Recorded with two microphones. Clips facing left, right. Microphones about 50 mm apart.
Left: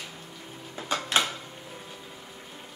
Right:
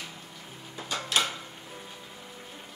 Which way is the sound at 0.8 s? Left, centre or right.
Left.